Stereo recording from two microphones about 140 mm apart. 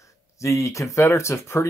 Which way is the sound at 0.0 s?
20° left (ahead or behind).